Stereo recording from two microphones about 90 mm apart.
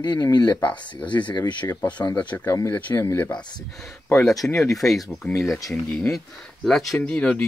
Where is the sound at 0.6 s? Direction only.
15° left (ahead or behind).